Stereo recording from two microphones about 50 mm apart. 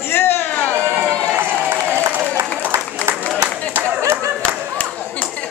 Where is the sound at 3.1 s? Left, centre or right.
Right.